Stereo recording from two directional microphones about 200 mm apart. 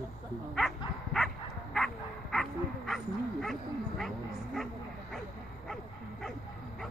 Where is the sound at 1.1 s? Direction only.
Centre (ahead or behind).